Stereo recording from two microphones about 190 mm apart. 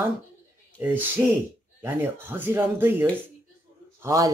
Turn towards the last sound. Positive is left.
turn(degrees=-15)  # may be behind; listen again after turning